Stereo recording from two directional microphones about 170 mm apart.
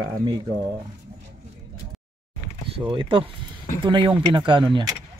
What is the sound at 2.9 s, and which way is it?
Speech, 30° right (ahead or behind).